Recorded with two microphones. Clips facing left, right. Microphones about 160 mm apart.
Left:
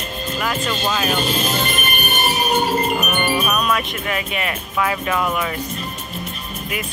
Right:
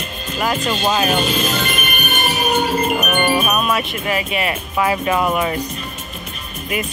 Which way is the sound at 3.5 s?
10° right (ahead or behind).